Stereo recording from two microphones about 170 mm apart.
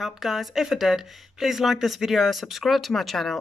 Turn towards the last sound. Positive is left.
turn(degrees=0)  # may be behind; listen again after turning